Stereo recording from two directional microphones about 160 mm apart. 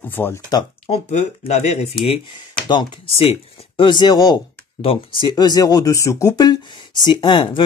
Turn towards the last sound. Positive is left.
turn(degrees=30)  # may be behind; listen again after turning